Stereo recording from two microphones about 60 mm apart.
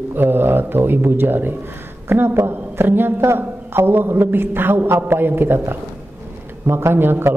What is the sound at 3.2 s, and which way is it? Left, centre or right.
A man's voice, right.